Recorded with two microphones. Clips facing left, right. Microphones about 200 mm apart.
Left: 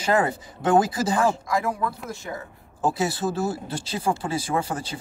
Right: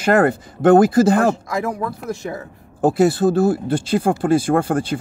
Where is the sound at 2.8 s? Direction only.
55° right (ahead or behind).